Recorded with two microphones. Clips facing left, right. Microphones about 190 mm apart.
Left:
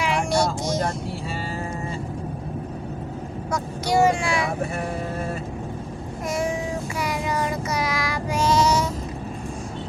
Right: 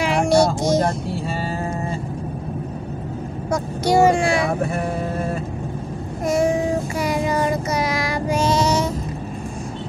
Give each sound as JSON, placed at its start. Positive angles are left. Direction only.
{"t": 0.0, "sound": "music", "side_deg": -35}
{"t": 3.5, "sound": "speech", "side_deg": -30}
{"t": 4.2, "sound": "vehicle", "side_deg": -35}
{"t": 7.0, "sound": "child singing", "side_deg": -30}